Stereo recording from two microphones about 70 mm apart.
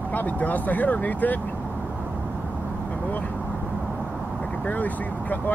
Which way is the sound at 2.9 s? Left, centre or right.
Left.